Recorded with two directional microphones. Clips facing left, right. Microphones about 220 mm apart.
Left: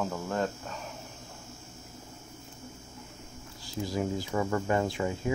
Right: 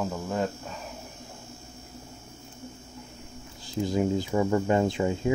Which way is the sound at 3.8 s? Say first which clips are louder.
Right 6 dB; 25° right (ahead or behind).